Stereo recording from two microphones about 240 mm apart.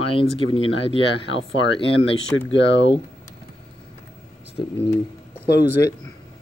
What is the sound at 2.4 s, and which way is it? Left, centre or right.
Speech, left.